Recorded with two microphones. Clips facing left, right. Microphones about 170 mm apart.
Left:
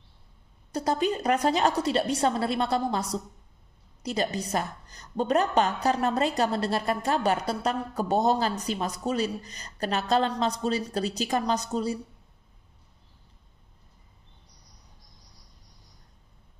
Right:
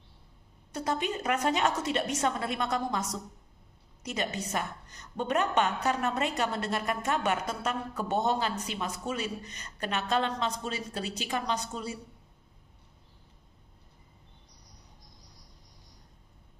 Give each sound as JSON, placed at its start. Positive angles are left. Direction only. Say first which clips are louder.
{"t": 0.7, "sound": "a woman's voice", "louder": "left 5 dB", "side_deg": 35}